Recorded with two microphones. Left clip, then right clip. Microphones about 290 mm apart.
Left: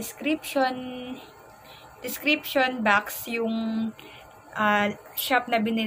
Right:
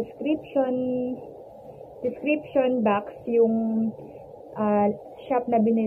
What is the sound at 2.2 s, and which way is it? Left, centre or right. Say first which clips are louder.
A woman's voice: left 1 dB; centre.